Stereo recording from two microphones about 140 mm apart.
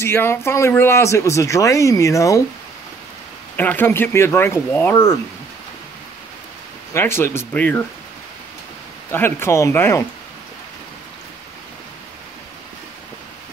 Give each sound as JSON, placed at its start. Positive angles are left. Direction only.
{"t": 0.0, "sound": "speech", "side_deg": 15}
{"t": 3.5, "sound": "speech", "side_deg": 15}
{"t": 6.9, "sound": "speech", "side_deg": 15}
{"t": 9.1, "sound": "speech", "side_deg": 15}